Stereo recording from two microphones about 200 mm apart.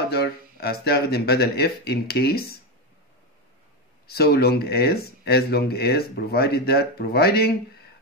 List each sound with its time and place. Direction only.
0.1 s speech: 50° left (ahead or behind)
4.1 s speech: 50° left (ahead or behind)